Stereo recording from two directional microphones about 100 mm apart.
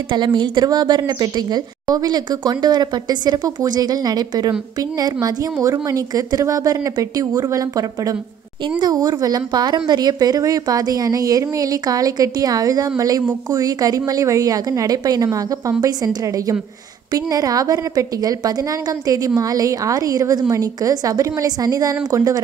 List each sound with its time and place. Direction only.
0.1 s a woman's voice: 50° right (ahead or behind)
8.6 s a woman's voice: 45° right (ahead or behind)